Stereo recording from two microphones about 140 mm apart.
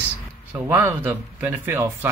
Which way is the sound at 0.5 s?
15° right (ahead or behind).